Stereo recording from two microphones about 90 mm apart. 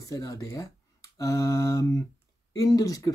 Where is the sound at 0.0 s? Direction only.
40° left (ahead or behind).